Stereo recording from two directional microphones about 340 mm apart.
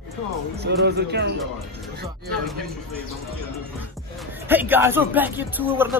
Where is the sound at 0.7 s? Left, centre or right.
Right.